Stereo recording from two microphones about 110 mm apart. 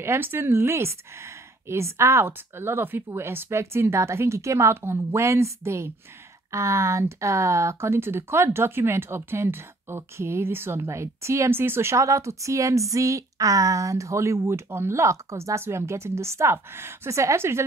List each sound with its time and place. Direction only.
0.0 s speech: 20° right (ahead or behind)